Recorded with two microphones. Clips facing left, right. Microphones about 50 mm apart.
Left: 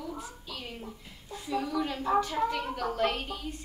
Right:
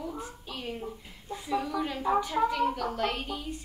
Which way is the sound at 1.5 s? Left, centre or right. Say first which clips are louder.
Right 1 dB; centre.